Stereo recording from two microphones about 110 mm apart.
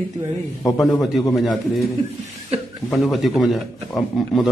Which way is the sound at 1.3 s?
Centre (ahead or behind).